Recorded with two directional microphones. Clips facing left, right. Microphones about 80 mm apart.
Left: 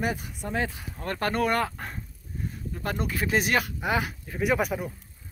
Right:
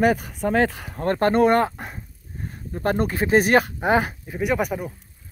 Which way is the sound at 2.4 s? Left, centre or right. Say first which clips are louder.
Right 8 dB; right.